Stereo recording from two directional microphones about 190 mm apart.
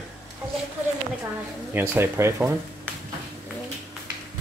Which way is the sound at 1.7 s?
10° right (ahead or behind).